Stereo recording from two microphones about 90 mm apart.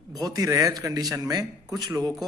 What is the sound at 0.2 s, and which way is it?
A man's voice, 45° right (ahead or behind).